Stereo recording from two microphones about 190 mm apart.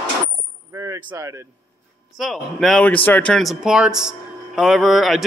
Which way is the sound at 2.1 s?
Centre (ahead or behind).